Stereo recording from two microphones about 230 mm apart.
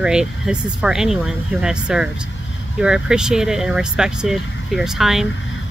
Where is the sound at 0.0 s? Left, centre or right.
Centre.